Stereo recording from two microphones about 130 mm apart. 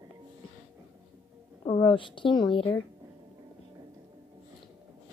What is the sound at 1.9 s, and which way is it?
Speech, 40° left (ahead or behind).